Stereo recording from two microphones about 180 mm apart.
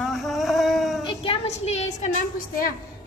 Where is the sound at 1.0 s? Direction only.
30° left (ahead or behind).